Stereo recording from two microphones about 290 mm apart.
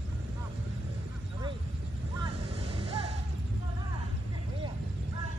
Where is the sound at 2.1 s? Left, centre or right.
Centre.